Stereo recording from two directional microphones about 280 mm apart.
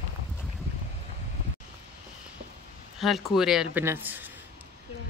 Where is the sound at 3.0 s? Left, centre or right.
Centre.